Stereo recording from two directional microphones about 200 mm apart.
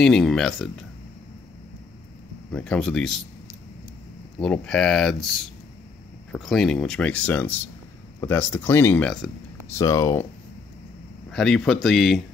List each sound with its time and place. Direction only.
0.0 s speech: centre (ahead or behind)
2.5 s speech: 5° left (ahead or behind)
4.4 s speech: 5° left (ahead or behind)
9.7 s speech: 15° left (ahead or behind)
11.3 s speech: centre (ahead or behind)